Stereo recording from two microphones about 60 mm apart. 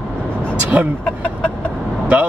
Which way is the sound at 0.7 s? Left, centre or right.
Right.